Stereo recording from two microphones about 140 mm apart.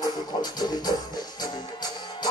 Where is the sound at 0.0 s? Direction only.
30° left (ahead or behind).